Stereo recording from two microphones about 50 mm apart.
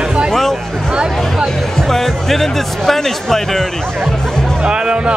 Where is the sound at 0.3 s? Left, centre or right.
Centre.